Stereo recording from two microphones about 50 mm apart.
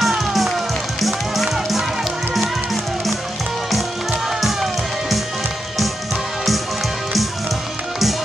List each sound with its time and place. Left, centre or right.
0.0 s music: centre
4.4 s music: centre